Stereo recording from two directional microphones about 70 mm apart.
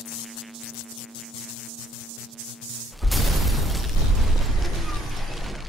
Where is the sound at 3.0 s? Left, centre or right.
Centre.